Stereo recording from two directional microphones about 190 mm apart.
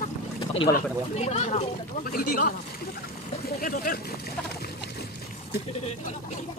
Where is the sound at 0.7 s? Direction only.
35° left (ahead or behind).